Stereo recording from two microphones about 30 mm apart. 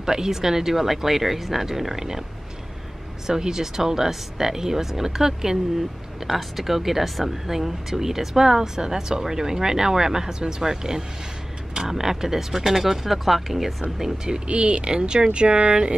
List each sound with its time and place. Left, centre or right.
0.0 s speech: centre
3.3 s speech: centre
6.3 s speech: centre
14.5 s speech: right